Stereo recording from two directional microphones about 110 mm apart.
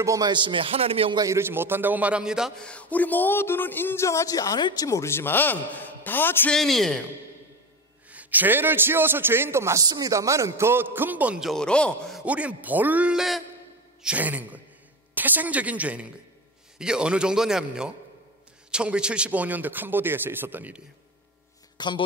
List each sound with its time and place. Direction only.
0.0 s a man's voice: 30° right (ahead or behind)
0.3 s a man's voice: 45° right (ahead or behind)
1.1 s a man's voice: 30° right (ahead or behind); by 2.5 s 5° right (ahead or behind)
2.6 s speech: 10° left (ahead or behind); by 4.8 s 40° left (ahead or behind)
4.8 s speech: 25° left (ahead or behind)
6.5 s speech: centre (ahead or behind)
8.1 s a man's voice: 15° right (ahead or behind)
9.8 s a man's voice: 35° right (ahead or behind); by 11.4 s 15° right (ahead or behind)
11.4 s speech: 5° left (ahead or behind)
12.3 s a man's voice: 10° right (ahead or behind)
21.7 s speech: 45° left (ahead or behind)